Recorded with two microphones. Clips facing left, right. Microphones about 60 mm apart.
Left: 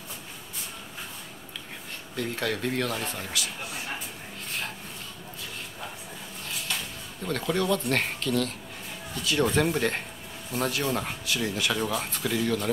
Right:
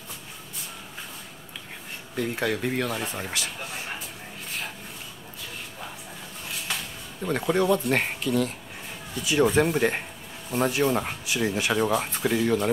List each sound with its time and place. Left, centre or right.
2.1 s speech: centre
7.2 s speech: centre